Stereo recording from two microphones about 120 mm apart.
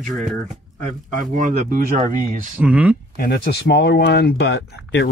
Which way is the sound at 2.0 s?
90° right.